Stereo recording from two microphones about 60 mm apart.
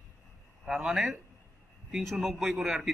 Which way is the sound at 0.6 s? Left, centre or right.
Centre.